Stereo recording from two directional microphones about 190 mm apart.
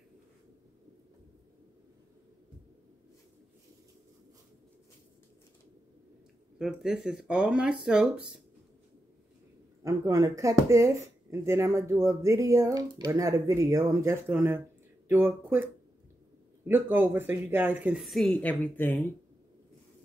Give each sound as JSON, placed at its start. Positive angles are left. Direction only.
{"t": 6.6, "sound": "speech", "side_deg": 0}
{"t": 9.8, "sound": "speech", "side_deg": -15}